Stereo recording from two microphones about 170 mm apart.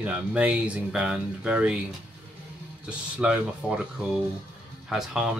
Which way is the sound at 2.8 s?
5° right (ahead or behind).